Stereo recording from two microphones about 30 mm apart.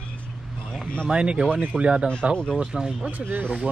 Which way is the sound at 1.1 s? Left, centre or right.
Right.